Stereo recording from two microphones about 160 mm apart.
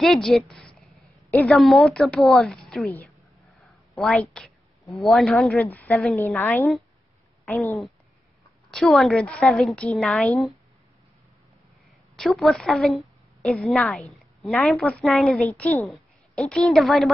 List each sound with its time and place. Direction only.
0.0 s a woman's voice: centre (ahead or behind)
3.6 s a sound: centre (ahead or behind)
5.0 s a woman's voice: centre (ahead or behind)
6.1 s a woman's voice: 15° left (ahead or behind)
8.7 s a woman's voice: centre (ahead or behind)
12.2 s a woman's voice: centre (ahead or behind)